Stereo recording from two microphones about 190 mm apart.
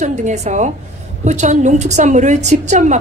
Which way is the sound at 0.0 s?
40° right (ahead or behind).